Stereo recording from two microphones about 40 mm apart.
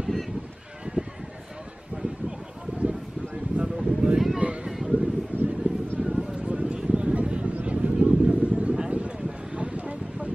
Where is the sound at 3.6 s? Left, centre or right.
Centre.